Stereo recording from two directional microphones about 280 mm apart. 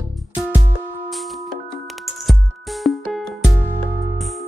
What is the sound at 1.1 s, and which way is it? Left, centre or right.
Music, centre.